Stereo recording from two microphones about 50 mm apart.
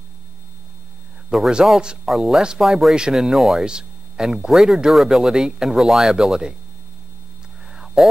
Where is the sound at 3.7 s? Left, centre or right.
Centre.